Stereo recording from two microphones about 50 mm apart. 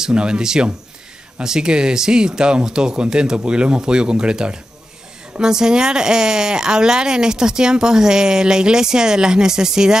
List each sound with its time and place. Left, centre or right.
0.0 s speech: centre